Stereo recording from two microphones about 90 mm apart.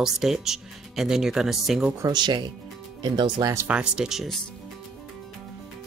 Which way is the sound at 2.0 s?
55° right (ahead or behind).